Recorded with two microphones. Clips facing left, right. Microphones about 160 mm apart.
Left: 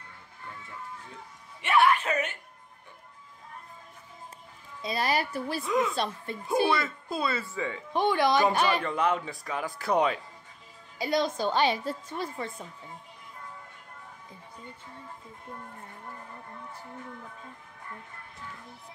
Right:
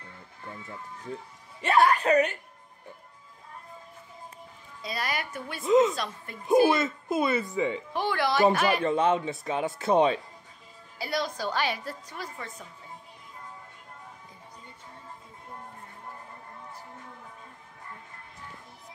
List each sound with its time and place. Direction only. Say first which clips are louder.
1.6 s a woman's voice: right 1 dB; 40° right (ahead or behind)
4.8 s speech: left 5 dB; 25° left (ahead or behind)
5.7 s speech: right 7 dB; 20° right (ahead or behind)
7.9 s speech: left 8 dB; 20° left (ahead or behind)
8.8 s speech: right 4 dB; 25° right (ahead or behind)
11.0 s a woman's voice: left 4 dB; 20° left (ahead or behind)